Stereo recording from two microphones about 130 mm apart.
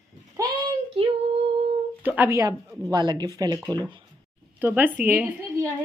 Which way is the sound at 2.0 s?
15° right (ahead or behind).